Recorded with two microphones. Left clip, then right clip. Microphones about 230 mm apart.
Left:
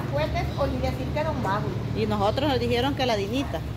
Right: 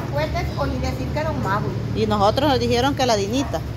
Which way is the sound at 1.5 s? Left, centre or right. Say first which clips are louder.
Right 4 dB; centre.